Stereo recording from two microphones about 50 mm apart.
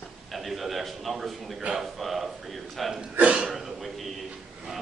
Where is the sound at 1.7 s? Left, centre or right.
Centre.